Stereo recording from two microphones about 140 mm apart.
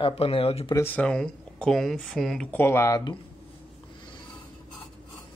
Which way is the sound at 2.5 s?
15° left (ahead or behind).